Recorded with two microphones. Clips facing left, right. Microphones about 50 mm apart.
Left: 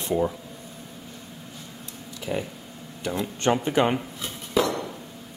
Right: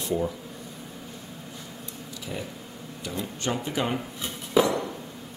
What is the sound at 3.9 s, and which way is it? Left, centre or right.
Dishes, centre.